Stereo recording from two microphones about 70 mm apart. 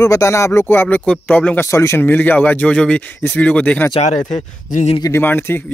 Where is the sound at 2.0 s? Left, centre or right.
Left.